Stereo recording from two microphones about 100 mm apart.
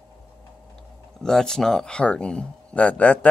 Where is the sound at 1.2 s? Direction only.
5° left (ahead or behind).